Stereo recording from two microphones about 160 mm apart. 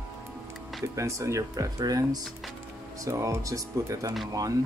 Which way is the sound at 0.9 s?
20° right (ahead or behind).